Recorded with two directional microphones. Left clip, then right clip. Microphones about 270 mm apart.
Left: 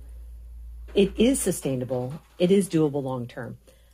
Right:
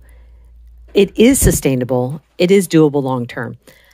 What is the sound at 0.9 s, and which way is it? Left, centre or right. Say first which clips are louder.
Speech: right 10 dB; right.